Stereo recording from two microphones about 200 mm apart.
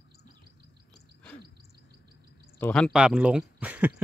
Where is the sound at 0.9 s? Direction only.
5° left (ahead or behind).